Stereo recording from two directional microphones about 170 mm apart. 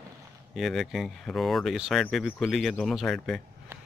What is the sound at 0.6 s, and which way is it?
Speech, centre (ahead or behind).